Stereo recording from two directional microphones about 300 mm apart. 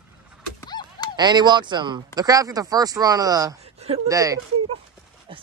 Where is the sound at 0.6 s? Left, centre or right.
Centre.